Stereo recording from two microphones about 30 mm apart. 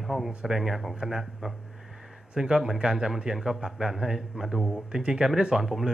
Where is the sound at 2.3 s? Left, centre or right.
Right.